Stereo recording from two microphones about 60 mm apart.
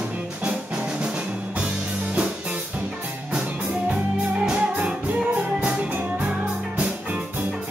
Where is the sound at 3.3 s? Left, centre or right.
Centre.